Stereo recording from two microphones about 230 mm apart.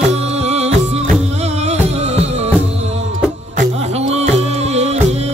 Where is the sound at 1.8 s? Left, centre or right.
Right.